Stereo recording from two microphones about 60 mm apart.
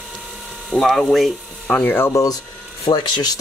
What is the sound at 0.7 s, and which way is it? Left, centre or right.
Speech, centre.